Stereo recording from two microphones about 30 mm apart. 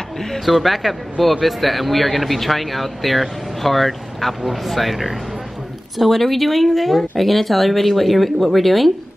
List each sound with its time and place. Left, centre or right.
0.5 s a man's voice: centre